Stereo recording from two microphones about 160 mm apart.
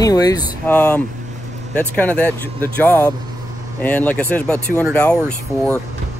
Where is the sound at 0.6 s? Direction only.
10° left (ahead or behind).